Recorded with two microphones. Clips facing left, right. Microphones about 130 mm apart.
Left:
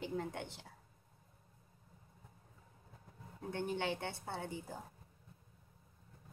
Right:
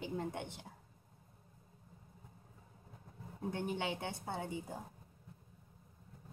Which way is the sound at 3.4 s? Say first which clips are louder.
Even; 15° right (ahead or behind).